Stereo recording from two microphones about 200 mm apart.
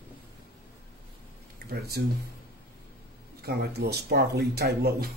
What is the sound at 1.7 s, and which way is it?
Speech, 50° right (ahead or behind).